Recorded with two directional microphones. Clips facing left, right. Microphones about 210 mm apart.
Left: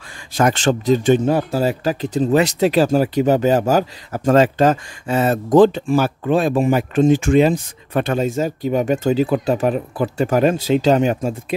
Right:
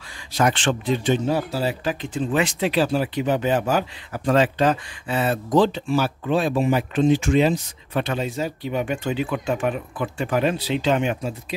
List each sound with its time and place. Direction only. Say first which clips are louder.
0.3 s speech: left 4 dB; 45° left (ahead or behind)